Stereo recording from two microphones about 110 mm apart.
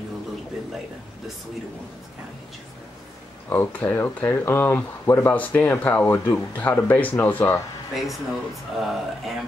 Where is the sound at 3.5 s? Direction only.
20° left (ahead or behind).